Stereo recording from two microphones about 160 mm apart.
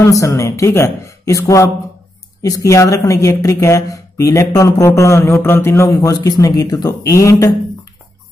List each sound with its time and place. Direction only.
0.0 s speech: 20° left (ahead or behind)